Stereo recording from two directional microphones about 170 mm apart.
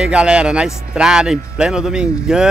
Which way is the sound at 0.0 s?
5° right (ahead or behind).